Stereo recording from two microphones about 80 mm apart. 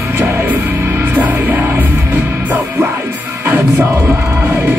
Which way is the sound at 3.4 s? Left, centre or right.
Right.